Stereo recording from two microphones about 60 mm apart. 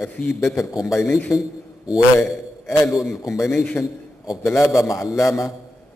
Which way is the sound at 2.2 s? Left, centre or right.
Left.